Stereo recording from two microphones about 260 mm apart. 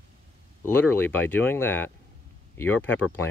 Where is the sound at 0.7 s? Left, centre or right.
Centre.